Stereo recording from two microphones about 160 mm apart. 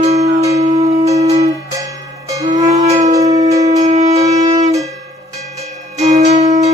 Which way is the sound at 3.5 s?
20° right (ahead or behind).